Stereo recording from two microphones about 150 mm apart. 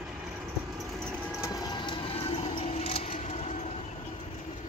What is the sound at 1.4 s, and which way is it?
Vehicle, 25° left (ahead or behind).